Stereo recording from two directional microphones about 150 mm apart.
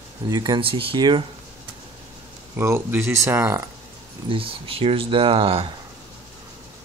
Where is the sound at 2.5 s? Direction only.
15° right (ahead or behind).